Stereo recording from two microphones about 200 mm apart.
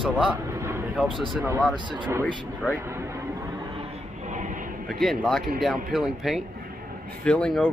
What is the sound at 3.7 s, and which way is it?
Music, 30° right (ahead or behind).